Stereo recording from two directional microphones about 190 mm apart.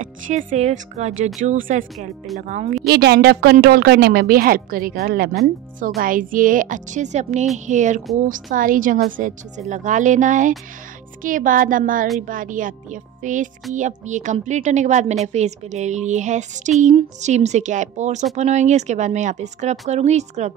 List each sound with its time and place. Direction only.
0.0 s a woman's voice: 40° right (ahead or behind)
2.9 s a woman's voice: 60° right (ahead or behind); by 20.5 s 35° right (ahead or behind)